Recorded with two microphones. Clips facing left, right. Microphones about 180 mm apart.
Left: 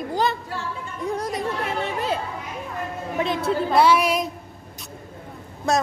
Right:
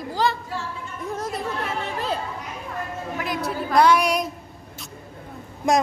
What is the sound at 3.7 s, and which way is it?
Speech, 5° left (ahead or behind).